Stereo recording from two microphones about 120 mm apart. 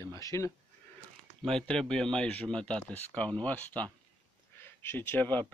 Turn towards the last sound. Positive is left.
turn(degrees=15)  # may be behind; listen again after turning